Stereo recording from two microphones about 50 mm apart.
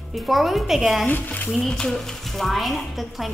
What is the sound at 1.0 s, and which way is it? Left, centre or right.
Speech, left.